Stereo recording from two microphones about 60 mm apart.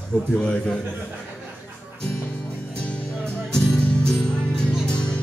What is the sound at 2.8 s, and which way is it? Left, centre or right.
Music, centre.